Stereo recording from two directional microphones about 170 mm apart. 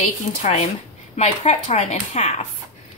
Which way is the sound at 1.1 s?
40° left (ahead or behind).